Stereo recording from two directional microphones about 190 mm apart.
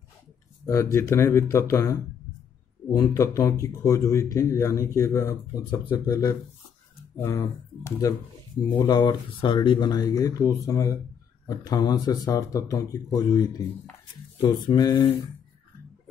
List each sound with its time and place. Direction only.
0.7 s a man's voice: 15° left (ahead or behind)